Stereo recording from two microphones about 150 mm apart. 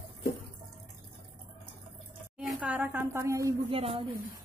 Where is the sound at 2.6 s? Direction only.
10° right (ahead or behind).